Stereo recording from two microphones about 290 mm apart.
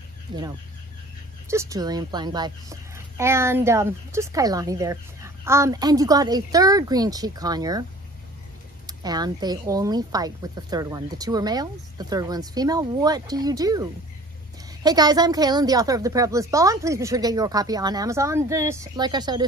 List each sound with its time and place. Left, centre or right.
0.3 s a woman's voice: centre
1.5 s a woman's voice: centre
8.8 s a woman's voice: centre